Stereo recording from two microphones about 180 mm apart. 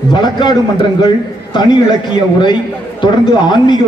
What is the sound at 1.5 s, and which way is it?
A man's voice, 25° left (ahead or behind).